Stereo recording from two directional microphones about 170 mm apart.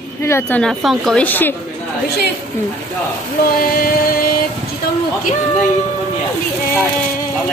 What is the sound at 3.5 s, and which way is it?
Music, 60° left (ahead or behind).